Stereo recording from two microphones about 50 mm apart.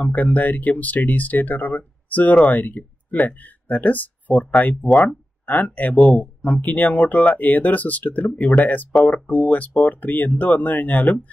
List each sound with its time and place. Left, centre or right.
0.0 s speech: left
5.0 s a sound: left
5.8 s speech: left